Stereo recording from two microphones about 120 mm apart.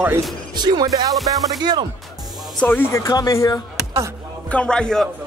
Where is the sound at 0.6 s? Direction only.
35° right (ahead or behind).